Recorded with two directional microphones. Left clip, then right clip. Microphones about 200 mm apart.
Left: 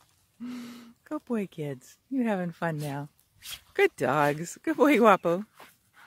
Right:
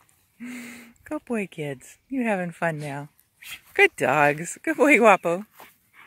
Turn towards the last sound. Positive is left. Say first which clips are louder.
# right 4 dB
turn(degrees=20)  # may be behind; listen again after turning